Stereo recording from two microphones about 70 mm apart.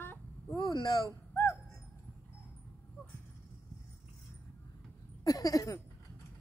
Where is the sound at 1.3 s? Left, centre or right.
Left.